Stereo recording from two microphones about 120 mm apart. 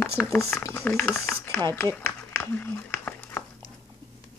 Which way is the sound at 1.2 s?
20° left (ahead or behind).